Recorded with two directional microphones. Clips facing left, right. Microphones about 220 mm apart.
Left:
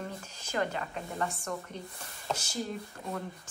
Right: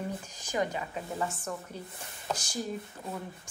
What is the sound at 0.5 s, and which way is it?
A woman's voice, 10° right (ahead or behind).